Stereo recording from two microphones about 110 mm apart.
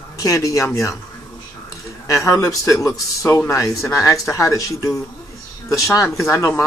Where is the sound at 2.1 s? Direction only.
30° left (ahead or behind).